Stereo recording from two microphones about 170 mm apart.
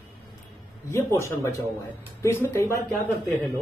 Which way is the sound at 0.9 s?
15° left (ahead or behind).